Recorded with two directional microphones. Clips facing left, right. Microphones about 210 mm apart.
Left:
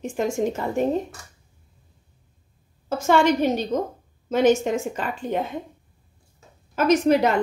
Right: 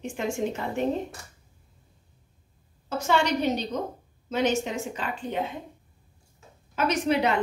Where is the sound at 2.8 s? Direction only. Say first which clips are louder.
Left 6 dB; 50° left (ahead or behind).